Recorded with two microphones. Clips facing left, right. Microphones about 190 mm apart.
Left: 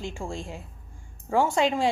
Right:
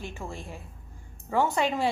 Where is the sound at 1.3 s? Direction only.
10° left (ahead or behind).